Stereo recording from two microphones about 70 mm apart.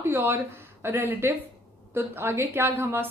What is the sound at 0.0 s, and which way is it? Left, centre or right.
A woman's voice, right.